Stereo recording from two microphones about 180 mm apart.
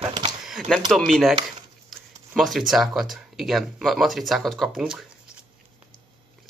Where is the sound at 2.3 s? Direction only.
Centre (ahead or behind).